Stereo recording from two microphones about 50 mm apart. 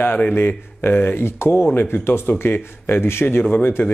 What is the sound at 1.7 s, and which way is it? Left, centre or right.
Speech, left.